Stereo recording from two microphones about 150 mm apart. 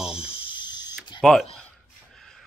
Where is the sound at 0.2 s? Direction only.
35° left (ahead or behind).